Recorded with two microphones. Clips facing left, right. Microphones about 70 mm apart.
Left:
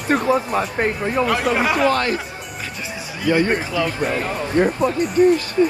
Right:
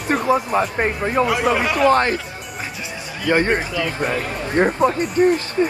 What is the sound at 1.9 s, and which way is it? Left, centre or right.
Speech, right.